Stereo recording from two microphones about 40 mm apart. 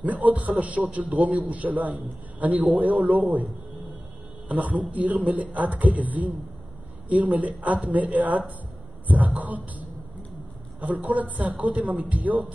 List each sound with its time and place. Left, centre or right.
0.0 s a man's voice: right
4.5 s a man's voice: right
10.8 s a man's voice: right